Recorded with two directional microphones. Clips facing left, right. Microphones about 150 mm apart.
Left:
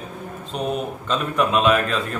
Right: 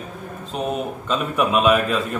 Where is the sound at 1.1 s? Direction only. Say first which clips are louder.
Even; 5° right (ahead or behind).